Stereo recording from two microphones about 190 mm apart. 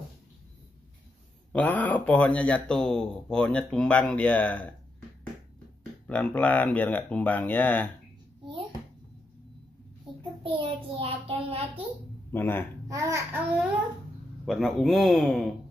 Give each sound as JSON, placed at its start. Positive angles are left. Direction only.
{"t": 1.5, "sound": "a man's voice", "side_deg": 10}
{"t": 6.0, "sound": "a man's voice", "side_deg": 10}
{"t": 10.4, "sound": "child singing", "side_deg": -30}
{"t": 12.3, "sound": "a man's voice", "side_deg": 10}
{"t": 12.8, "sound": "a man's voice", "side_deg": -15}